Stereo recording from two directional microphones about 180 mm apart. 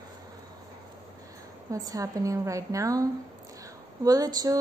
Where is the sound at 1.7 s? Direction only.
20° right (ahead or behind).